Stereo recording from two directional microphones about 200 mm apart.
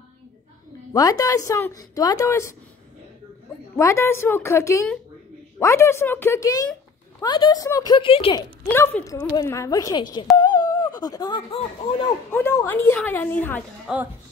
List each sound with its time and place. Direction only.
0.9 s a woman's voice: 20° left (ahead or behind)
3.7 s a woman's voice: 15° left (ahead or behind)
8.6 s a woman's voice: 10° left (ahead or behind)
10.3 s a sound: 20° left (ahead or behind)
11.0 s speech: 20° left (ahead or behind)
12.3 s a woman's voice: 10° left (ahead or behind)
13.9 s speech: 5° right (ahead or behind)